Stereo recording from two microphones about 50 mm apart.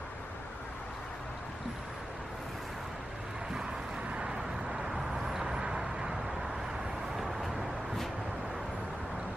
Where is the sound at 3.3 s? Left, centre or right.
Centre.